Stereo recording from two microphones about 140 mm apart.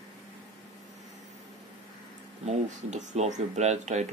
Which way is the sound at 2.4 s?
55° right (ahead or behind).